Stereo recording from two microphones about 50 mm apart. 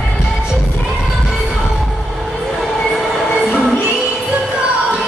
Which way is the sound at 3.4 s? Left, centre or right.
Right.